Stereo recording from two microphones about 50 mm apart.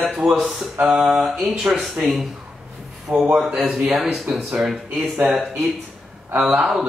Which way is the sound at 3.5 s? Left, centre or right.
Centre.